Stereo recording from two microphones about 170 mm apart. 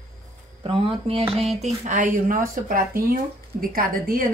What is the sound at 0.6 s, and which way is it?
Speech, 30° right (ahead or behind).